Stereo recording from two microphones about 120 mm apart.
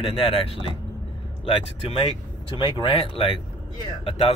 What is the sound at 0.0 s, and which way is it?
Speech, 50° left (ahead or behind).